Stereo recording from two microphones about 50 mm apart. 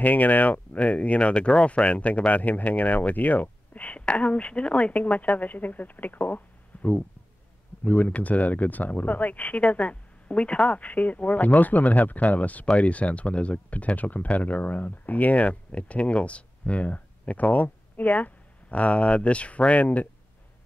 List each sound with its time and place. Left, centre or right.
0.0 s speech: left